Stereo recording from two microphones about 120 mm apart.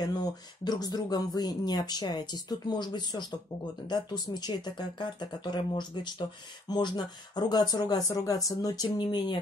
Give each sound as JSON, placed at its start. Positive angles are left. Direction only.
{"t": 0.0, "sound": "speech", "side_deg": 35}